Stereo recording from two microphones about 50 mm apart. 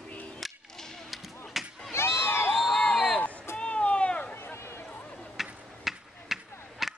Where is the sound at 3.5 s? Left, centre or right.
Left.